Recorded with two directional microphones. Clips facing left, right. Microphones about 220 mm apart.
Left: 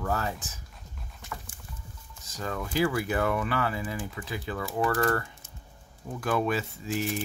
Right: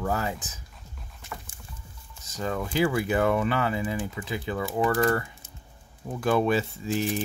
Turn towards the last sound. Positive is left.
turn(degrees=-30)  # may be behind; listen again after turning